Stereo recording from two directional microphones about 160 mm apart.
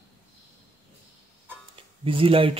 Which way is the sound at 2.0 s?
35° right (ahead or behind).